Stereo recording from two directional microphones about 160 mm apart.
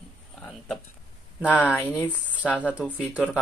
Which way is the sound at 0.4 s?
5° left (ahead or behind).